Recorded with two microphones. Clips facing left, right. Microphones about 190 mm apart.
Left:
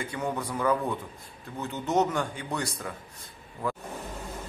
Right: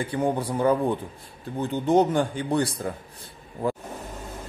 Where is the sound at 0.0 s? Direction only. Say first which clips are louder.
Right 6 dB; 30° right (ahead or behind).